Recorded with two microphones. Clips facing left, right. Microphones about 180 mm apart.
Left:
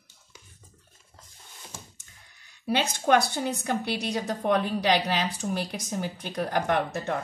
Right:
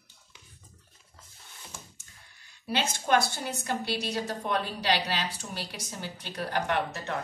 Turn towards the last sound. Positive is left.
turn(degrees=50)  # may be behind; listen again after turning